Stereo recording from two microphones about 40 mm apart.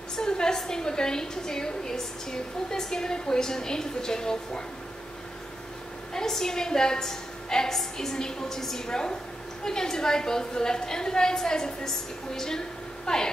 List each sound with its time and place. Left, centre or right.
0.1 s a sound: centre
0.6 s a woman's voice: centre
6.1 s a woman's voice: centre